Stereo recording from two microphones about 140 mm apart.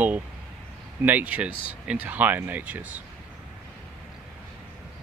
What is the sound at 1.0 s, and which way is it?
Speech, 10° right (ahead or behind).